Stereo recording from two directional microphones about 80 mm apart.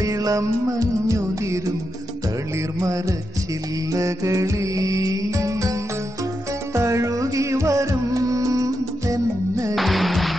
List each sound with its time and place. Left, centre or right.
0.0 s music: right
2.8 s music: right
6.7 s music: right
9.8 s music: centre